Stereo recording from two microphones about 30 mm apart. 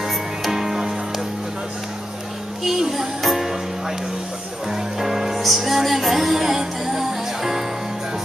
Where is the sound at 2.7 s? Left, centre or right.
Centre.